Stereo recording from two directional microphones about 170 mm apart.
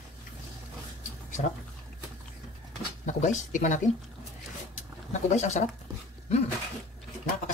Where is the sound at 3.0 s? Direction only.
45° left (ahead or behind).